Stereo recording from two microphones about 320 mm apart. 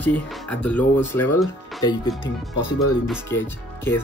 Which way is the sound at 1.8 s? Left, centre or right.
Centre.